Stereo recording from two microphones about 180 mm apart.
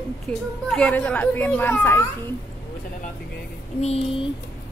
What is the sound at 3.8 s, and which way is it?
Speech, 35° left (ahead or behind).